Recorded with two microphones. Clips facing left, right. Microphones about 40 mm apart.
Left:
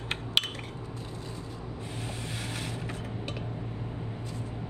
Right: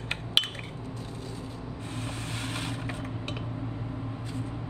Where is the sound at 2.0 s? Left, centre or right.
Right.